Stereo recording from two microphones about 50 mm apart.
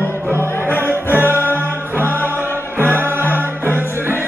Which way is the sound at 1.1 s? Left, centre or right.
Right.